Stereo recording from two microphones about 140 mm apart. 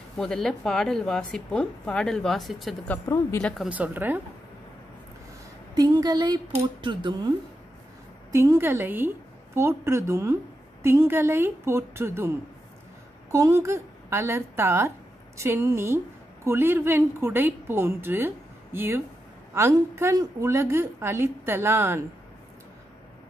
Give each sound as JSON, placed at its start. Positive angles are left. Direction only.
{"t": 0.2, "sound": "speech", "side_deg": 5}
{"t": 2.9, "sound": "speech", "side_deg": 15}
{"t": 3.6, "sound": "a woman's voice", "side_deg": -10}
{"t": 5.8, "sound": "speech", "side_deg": -25}
{"t": 8.3, "sound": "a woman's voice", "side_deg": -20}